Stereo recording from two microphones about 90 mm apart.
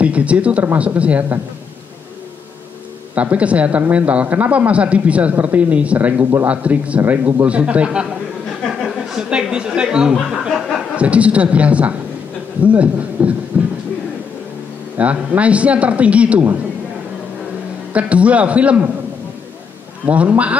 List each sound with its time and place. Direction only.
0.0 s speech: 15° right (ahead or behind)
3.2 s speech: 15° right (ahead or behind)
8.6 s a sound: centre (ahead or behind)
9.3 s speech: 10° right (ahead or behind)
15.0 s speech: 15° right (ahead or behind)
17.9 s speech: 15° right (ahead or behind)
20.1 s speech: 15° right (ahead or behind)